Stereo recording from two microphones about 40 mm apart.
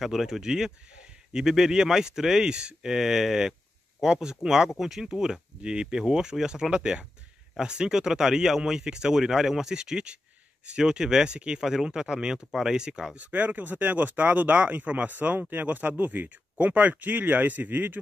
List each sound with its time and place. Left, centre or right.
0.0 s speech: centre
13.2 s speech: right